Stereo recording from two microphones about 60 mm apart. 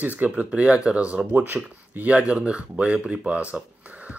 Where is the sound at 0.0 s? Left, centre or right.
Right.